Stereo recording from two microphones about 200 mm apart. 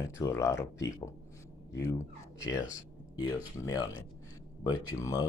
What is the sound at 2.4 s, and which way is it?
Speech, 15° left (ahead or behind).